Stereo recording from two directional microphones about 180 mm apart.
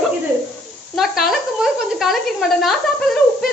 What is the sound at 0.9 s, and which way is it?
A woman's voice, centre (ahead or behind).